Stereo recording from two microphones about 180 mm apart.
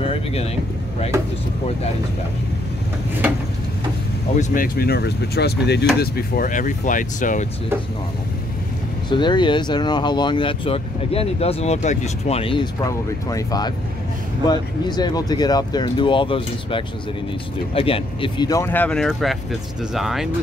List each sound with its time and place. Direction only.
0.0 s vehicle: 35° left (ahead or behind)
4.4 s speech: 55° left (ahead or behind)
9.1 s speech: 25° left (ahead or behind)
12.8 s speech: 20° left (ahead or behind); by 20.2 s centre (ahead or behind)